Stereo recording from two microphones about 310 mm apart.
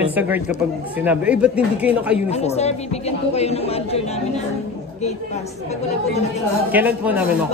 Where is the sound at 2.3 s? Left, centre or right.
Centre.